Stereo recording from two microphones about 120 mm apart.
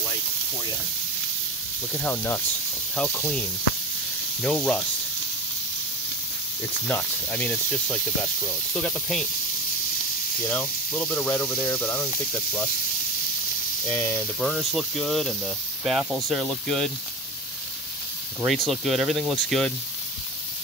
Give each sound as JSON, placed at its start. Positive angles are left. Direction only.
{"t": 1.9, "sound": "speech", "side_deg": 10}
{"t": 6.9, "sound": "speech", "side_deg": 15}
{"t": 10.5, "sound": "speech", "side_deg": 10}
{"t": 13.8, "sound": "speech", "side_deg": 20}
{"t": 14.4, "sound": "speech", "side_deg": 0}
{"t": 18.5, "sound": "speech", "side_deg": 0}